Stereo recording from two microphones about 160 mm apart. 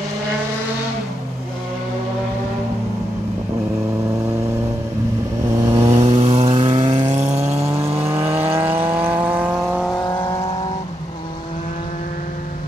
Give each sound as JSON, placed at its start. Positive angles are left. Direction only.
{"t": 5.6, "sound": "vehicle", "side_deg": -20}
{"t": 6.0, "sound": "vehicle", "side_deg": -35}
{"t": 7.1, "sound": "vehicle", "side_deg": -45}
{"t": 8.0, "sound": "vehicle", "side_deg": -15}
{"t": 9.9, "sound": "vehicle", "side_deg": 25}